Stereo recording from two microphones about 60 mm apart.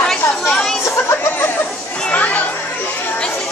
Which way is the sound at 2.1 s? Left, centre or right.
Left.